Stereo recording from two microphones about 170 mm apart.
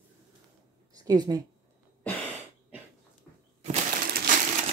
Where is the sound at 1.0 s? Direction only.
25° right (ahead or behind).